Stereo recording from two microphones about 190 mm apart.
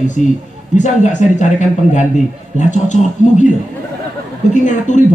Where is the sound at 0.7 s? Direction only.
40° left (ahead or behind).